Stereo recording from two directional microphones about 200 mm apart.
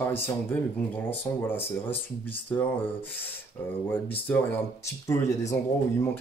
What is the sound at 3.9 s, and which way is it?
Speech, 10° left (ahead or behind).